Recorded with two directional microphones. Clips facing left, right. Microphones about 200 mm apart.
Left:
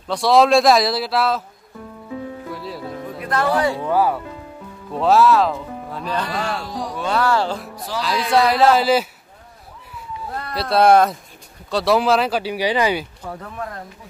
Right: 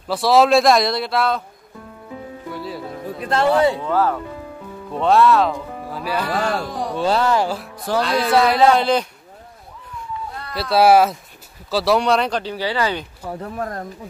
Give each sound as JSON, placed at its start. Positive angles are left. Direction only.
{"t": 0.1, "sound": "speech", "side_deg": 0}
{"t": 2.5, "sound": "speech", "side_deg": 0}
{"t": 3.3, "sound": "speech", "side_deg": -25}
{"t": 3.8, "sound": "speech", "side_deg": 10}
{"t": 4.9, "sound": "speech", "side_deg": 0}
{"t": 6.3, "sound": "speech", "side_deg": -45}
{"t": 6.9, "sound": "speech", "side_deg": -30}
{"t": 7.2, "sound": "speech", "side_deg": -15}
{"t": 7.9, "sound": "speech", "side_deg": -55}
{"t": 8.3, "sound": "speech", "side_deg": 0}
{"t": 10.5, "sound": "speech", "side_deg": 0}
{"t": 13.4, "sound": "speech", "side_deg": -40}